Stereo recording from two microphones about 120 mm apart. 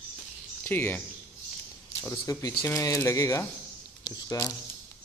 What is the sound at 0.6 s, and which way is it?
Speech, 15° left (ahead or behind).